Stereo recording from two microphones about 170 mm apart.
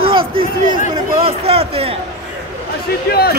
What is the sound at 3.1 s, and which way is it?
Speech, 65° left (ahead or behind).